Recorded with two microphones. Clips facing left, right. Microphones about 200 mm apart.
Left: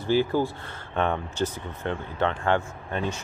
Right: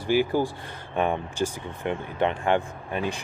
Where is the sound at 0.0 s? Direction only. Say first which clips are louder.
Even; 15° right (ahead or behind).